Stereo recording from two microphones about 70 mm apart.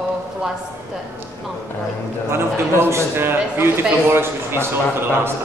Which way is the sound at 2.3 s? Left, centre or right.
Right.